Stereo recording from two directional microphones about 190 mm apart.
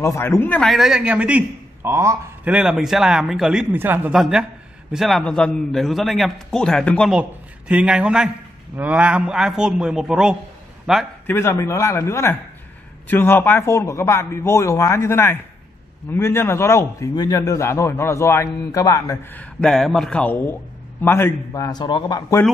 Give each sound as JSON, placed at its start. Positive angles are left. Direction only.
{"t": 0.0, "sound": "a man's voice", "side_deg": 15}
{"t": 11.2, "sound": "a man's voice", "side_deg": 15}
{"t": 19.6, "sound": "a man's voice", "side_deg": 5}